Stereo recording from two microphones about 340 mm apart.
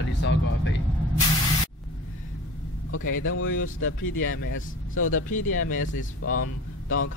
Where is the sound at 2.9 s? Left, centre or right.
Left.